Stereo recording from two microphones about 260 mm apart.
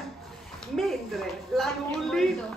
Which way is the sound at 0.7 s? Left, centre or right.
Centre.